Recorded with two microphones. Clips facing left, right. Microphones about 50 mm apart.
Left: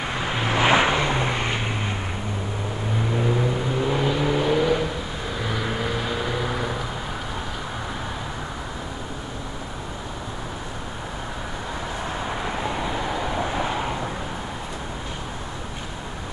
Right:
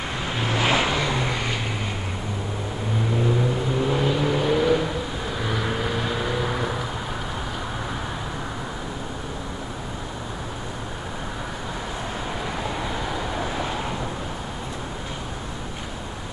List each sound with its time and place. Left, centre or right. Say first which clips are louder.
0.2 s vehicle: left 3 dB; centre
3.2 s vehicle: even; centre
12.4 s vehicle: left 2 dB; centre